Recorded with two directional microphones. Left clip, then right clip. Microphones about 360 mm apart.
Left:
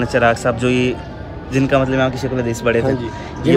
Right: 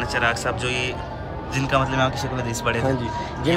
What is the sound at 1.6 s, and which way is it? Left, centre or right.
A man's voice, centre.